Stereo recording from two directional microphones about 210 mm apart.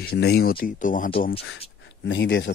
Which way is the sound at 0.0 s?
50° left (ahead or behind).